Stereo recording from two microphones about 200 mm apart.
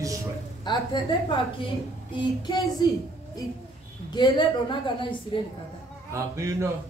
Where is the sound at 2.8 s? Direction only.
20° left (ahead or behind).